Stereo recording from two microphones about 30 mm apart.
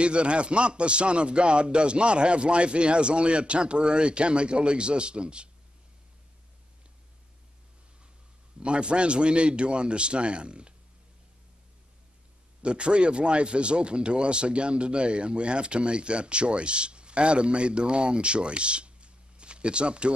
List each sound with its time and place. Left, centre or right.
0.0 s speech: right
8.5 s speech: right
12.6 s speech: right